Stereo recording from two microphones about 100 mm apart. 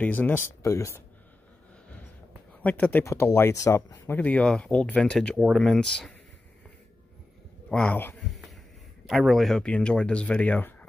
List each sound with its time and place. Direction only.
0.0 s speech: 15° left (ahead or behind)
0.6 s speech: 30° left (ahead or behind)
2.6 s speech: 15° left (ahead or behind); by 4.1 s 35° left (ahead or behind)
4.1 s speech: 15° left (ahead or behind)
7.7 s speech: 15° left (ahead or behind)
8.2 s a sound: centre (ahead or behind)
9.0 s speech: 5° right (ahead or behind); by 10.9 s 15° left (ahead or behind)